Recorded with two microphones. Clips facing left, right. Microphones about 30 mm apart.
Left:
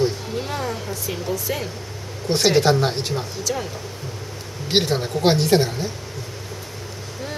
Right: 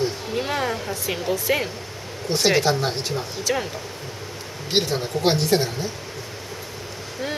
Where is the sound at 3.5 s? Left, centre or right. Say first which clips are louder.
Right 3 dB; right.